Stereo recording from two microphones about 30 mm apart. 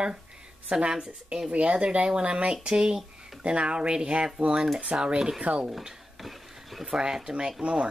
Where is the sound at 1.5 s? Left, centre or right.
Right.